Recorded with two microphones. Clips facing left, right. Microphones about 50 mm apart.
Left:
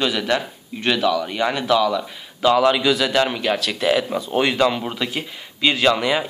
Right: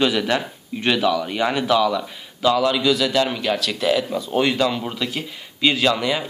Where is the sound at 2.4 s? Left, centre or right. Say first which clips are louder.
Left 2 dB; left.